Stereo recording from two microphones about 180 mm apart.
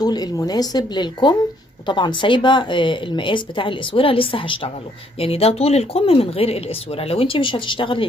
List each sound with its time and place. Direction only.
0.0 s a woman's voice: 20° left (ahead or behind)